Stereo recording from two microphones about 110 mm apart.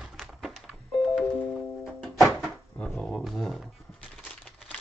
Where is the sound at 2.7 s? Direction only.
5° left (ahead or behind).